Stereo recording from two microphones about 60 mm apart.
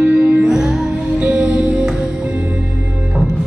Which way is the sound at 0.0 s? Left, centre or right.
Centre.